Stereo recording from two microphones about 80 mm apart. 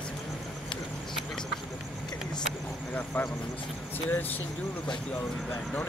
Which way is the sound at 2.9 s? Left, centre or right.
Left.